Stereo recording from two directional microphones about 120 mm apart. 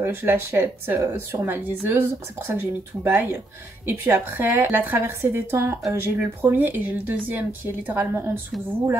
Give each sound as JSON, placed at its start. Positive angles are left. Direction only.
{"t": 0.0, "sound": "a woman's voice", "side_deg": -20}